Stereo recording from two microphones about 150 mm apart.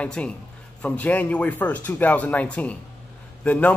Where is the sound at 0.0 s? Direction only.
10° left (ahead or behind).